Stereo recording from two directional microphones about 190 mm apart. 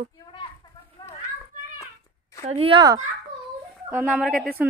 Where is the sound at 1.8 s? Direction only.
15° left (ahead or behind).